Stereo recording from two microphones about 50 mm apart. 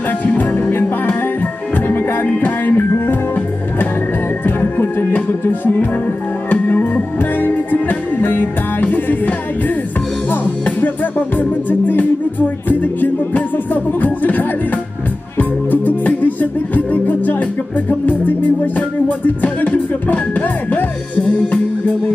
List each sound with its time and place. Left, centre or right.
0.2 s music: left
4.5 s music: left
10.8 s music: left